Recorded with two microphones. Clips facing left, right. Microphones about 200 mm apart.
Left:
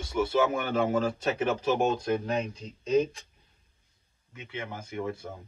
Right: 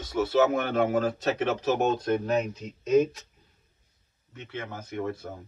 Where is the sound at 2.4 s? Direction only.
5° right (ahead or behind).